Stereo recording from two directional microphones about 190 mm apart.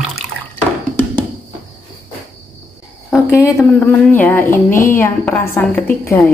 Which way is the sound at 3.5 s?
5° left (ahead or behind).